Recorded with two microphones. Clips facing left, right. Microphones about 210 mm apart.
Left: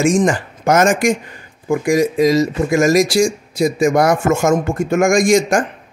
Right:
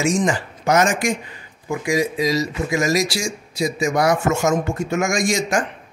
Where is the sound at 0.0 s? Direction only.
50° left (ahead or behind).